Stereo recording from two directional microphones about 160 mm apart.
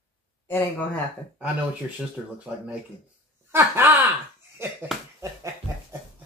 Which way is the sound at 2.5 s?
10° right (ahead or behind).